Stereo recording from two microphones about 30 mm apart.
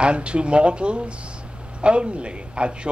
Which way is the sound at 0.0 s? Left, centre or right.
Right.